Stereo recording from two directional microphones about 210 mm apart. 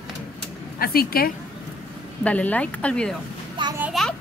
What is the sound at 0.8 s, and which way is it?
Speech, 45° left (ahead or behind).